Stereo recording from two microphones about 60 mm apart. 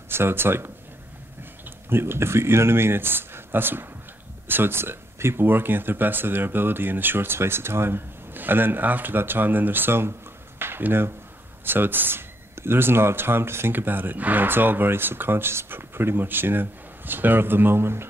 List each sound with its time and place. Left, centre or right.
0.1 s speech: right